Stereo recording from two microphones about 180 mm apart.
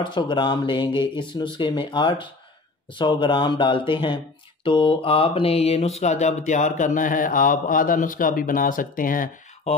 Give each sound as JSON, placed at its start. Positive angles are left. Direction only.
{"t": 0.0, "sound": "speech", "side_deg": 25}
{"t": 4.6, "sound": "mantra", "side_deg": 30}